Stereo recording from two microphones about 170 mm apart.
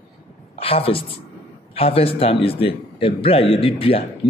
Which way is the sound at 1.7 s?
35° left (ahead or behind).